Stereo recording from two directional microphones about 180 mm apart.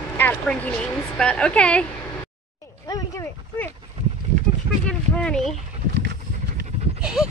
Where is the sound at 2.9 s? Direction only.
15° left (ahead or behind).